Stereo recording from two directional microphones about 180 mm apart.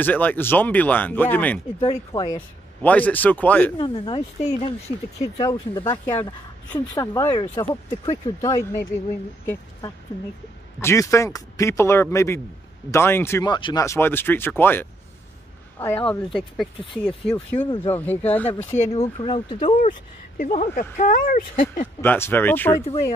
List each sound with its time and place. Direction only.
0.0 s speech: 10° left (ahead or behind)
1.8 s speech: 30° left (ahead or behind)
2.3 s speech: 10° left (ahead or behind)
3.7 s speech: 30° left (ahead or behind)
5.4 s speech: 15° left (ahead or behind)
10.8 s speech: 15° left (ahead or behind)
13.8 s speech: 15° left (ahead or behind)
18.9 s speech: 35° left (ahead or behind); by 21.8 s 50° left (ahead or behind)
22.0 s speech: 10° left (ahead or behind)